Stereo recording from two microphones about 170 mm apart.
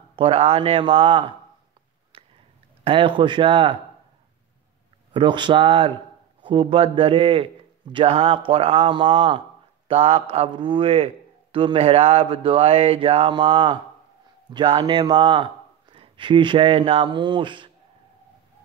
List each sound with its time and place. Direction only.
0.1 s speech: 35° right (ahead or behind)
2.1 s a sound: 30° right (ahead or behind)
2.8 s speech: 30° right (ahead or behind)
5.1 s a man's voice: 30° right (ahead or behind)